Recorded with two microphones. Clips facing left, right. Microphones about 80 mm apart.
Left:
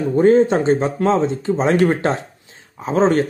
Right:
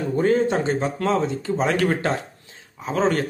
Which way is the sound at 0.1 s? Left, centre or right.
Left.